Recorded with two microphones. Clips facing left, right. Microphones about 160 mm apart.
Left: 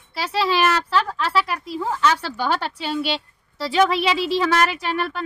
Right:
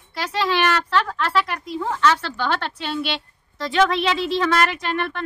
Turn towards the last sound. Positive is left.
turn(degrees=5)  # may be behind; listen again after turning